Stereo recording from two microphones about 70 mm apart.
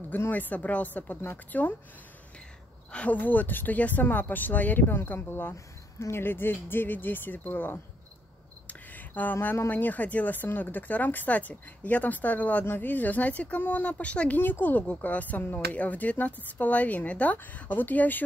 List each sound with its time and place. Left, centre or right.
0.1 s speech: left
2.9 s speech: centre
5.5 s speech: left
8.6 s a sound: left
9.7 s speech: left